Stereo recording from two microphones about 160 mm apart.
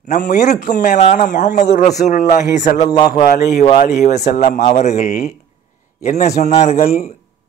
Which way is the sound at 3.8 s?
50° left (ahead or behind).